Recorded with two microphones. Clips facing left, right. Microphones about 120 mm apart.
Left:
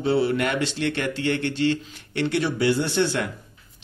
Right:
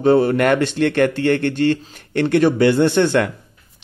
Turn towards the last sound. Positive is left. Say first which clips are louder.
# right 8 dB
turn(degrees=-60)  # may be behind; listen again after turning